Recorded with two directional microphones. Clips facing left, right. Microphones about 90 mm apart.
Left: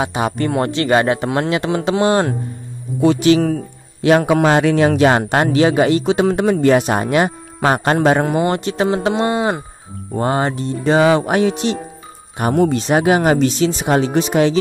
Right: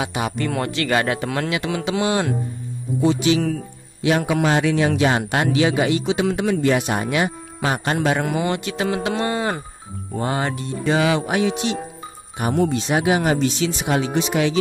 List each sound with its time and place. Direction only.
0.0 s a man's voice: 35° left (ahead or behind)
3.0 s a man's voice: 60° left (ahead or behind); by 9.6 s 20° left (ahead or behind)
10.1 s a man's voice: 40° left (ahead or behind)
12.4 s a man's voice: 55° left (ahead or behind)
13.7 s a man's voice: 40° left (ahead or behind)